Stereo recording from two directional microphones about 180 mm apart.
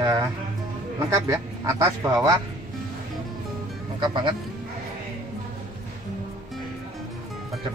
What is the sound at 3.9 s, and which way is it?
Speech, 25° right (ahead or behind).